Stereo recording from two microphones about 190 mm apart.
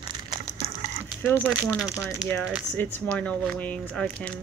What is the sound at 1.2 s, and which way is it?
Speech, 10° left (ahead or behind).